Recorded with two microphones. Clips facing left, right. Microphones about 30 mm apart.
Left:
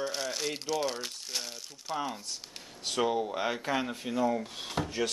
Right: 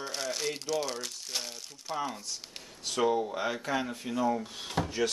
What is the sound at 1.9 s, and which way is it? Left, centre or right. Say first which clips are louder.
Speech: even; centre.